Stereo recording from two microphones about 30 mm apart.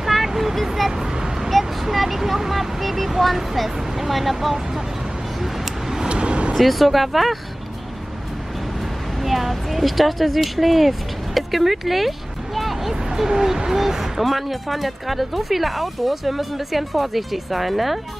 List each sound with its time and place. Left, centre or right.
0.0 s vehicle: centre
0.9 s vehicle: right
1.5 s speech: centre
6.0 s vehicle: right
6.5 s speech: centre
9.2 s speech: centre
12.9 s speech: centre